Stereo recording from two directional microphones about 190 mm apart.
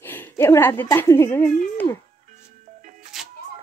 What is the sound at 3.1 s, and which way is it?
Music, centre (ahead or behind).